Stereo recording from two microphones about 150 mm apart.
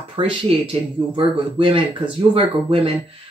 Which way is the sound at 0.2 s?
35° right (ahead or behind).